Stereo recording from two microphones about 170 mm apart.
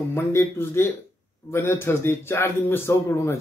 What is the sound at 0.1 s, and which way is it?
Speech, 15° left (ahead or behind).